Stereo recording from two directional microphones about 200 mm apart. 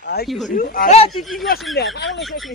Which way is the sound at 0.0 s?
50° left (ahead or behind).